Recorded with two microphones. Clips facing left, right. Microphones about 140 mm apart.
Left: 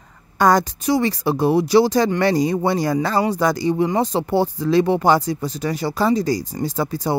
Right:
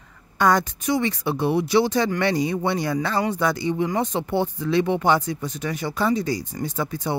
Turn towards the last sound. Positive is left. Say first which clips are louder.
# left 4 dB
turn(degrees=35)  # may be behind; listen again after turning